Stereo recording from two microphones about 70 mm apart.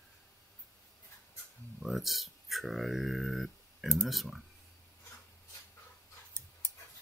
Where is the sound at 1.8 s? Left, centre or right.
Centre.